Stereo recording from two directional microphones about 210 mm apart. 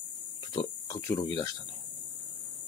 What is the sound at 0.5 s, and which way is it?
Speech, 20° left (ahead or behind).